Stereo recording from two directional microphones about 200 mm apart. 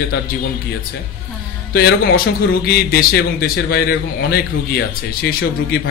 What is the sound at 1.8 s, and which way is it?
Speech, 50° left (ahead or behind).